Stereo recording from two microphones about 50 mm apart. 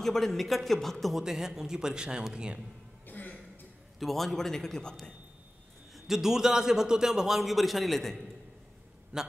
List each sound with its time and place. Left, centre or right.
0.0 s a man's voice: centre
1.2 s a man's voice: centre
3.1 s a sound: left
4.0 s a man's voice: centre
5.9 s a man's voice: centre
9.1 s a man's voice: centre